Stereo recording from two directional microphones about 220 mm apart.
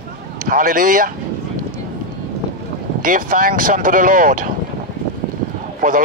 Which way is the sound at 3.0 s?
40° right (ahead or behind).